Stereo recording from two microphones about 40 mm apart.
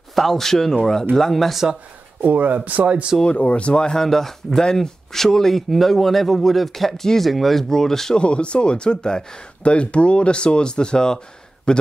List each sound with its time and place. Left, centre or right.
0.1 s speech: centre
2.2 s speech: right
3.3 s speech: left
3.9 s speech: centre
8.2 s speech: left